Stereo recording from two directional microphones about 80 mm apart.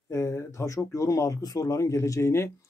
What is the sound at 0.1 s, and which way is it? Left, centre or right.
Speech, left.